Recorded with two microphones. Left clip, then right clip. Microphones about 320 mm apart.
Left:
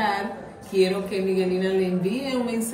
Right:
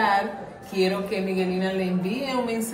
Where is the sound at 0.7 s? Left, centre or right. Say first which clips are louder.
Left 2 dB; centre.